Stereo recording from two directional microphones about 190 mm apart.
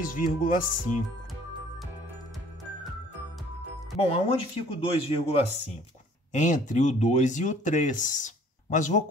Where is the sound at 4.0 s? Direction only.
35° left (ahead or behind).